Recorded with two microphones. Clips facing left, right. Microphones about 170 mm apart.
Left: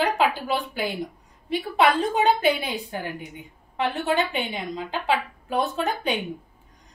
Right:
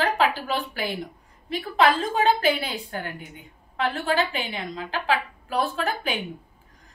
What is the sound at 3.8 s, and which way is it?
A woman's voice, 20° left (ahead or behind).